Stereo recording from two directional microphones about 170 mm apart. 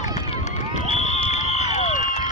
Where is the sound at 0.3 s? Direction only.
40° left (ahead or behind).